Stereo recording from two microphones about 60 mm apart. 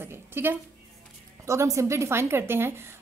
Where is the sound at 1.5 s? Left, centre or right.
Right.